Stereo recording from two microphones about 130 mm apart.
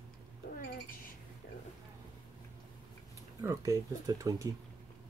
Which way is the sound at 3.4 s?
25° right (ahead or behind).